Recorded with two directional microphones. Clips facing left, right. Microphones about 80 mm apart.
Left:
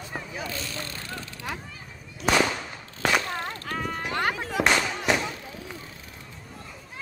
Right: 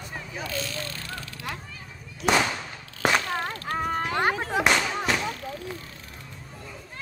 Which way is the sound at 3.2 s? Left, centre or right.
Right.